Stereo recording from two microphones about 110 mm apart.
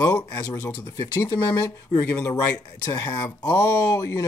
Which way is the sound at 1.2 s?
30° left (ahead or behind).